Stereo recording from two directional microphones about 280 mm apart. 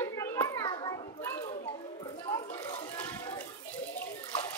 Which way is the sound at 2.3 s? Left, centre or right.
Left.